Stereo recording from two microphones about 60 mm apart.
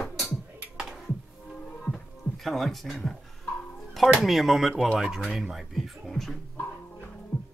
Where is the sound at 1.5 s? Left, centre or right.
Centre.